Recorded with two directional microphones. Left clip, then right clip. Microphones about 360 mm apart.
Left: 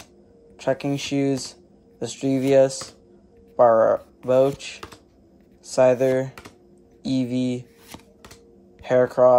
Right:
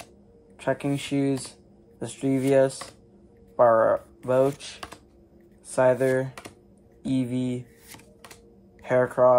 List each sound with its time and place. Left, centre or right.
0.6 s speech: centre
5.7 s speech: centre
8.8 s speech: centre